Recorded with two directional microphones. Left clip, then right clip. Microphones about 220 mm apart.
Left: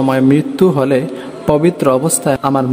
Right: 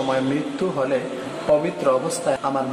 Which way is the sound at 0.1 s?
50° left (ahead or behind).